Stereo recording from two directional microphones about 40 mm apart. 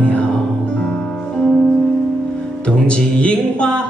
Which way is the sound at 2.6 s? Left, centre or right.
Left.